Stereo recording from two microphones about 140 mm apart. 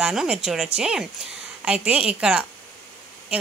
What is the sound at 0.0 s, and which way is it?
A woman's voice, 5° right (ahead or behind).